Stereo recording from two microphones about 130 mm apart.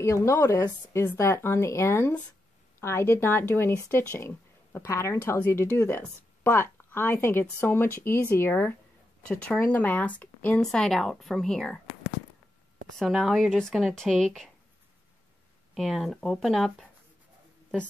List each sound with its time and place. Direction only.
0.0 s a woman's voice: 20° left (ahead or behind); by 11.8 s 5° left (ahead or behind)
13.0 s a woman's voice: 5° right (ahead or behind)
15.7 s a woman's voice: centre (ahead or behind)